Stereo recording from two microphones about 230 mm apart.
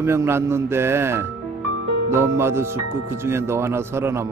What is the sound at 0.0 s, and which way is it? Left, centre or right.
Speech, centre.